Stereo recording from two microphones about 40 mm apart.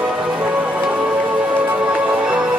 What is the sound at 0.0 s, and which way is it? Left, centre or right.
Music, right.